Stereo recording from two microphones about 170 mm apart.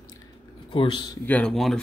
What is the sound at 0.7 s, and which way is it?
Speech, 30° left (ahead or behind).